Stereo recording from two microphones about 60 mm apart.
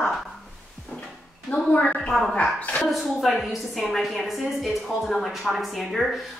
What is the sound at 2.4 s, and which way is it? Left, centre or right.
Speech, left.